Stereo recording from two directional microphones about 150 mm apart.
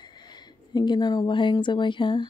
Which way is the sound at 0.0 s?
30° left (ahead or behind).